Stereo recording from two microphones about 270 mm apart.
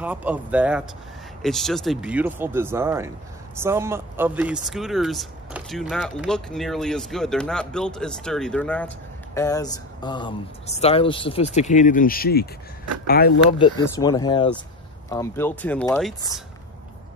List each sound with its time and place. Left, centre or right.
0.0 s speech: centre; by 13.3 s left
13.6 s speech: centre